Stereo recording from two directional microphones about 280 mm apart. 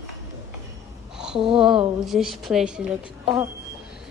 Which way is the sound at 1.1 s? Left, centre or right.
Centre.